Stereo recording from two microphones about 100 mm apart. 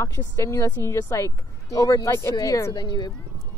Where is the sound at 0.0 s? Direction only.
30° left (ahead or behind).